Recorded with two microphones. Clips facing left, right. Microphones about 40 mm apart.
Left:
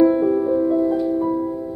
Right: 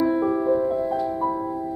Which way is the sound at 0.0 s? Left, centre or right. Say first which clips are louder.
Left 5 dB; centre.